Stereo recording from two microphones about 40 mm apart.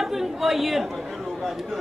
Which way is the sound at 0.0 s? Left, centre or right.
Centre.